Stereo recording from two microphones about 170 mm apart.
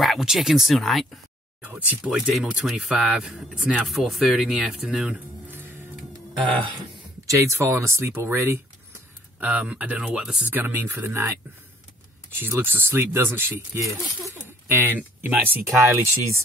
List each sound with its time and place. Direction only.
0.0 s speech: centre (ahead or behind)
7.2 s speech: 15° right (ahead or behind)
12.4 s speech: 10° right (ahead or behind)